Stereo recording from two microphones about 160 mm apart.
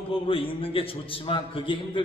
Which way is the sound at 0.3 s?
35° left (ahead or behind).